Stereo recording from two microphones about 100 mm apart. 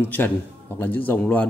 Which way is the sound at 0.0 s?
20° left (ahead or behind).